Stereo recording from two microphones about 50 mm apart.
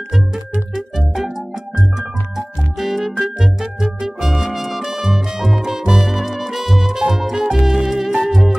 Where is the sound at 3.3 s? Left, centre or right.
Centre.